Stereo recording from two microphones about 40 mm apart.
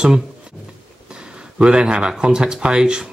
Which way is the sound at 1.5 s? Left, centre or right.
Right.